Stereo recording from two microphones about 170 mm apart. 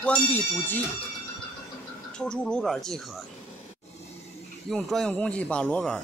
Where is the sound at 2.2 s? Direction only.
5° left (ahead or behind).